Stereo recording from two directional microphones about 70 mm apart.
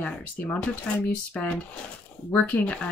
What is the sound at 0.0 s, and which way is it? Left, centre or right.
Speech, centre.